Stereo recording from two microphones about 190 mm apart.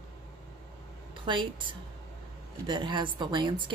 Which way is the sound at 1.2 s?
25° right (ahead or behind).